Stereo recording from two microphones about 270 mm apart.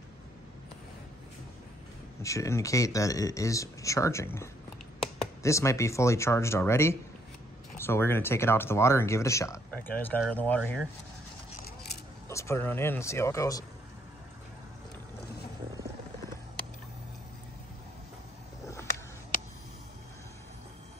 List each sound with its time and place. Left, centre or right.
2.2 s speech: centre
12.3 s speech: centre